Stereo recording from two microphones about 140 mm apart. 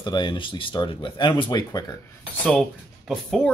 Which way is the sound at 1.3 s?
25° left (ahead or behind).